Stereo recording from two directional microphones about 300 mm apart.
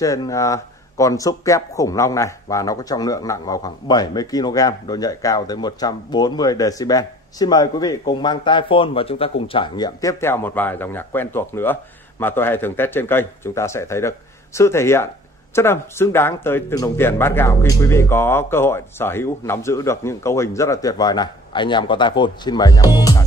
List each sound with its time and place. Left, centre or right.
0.0 s speech: centre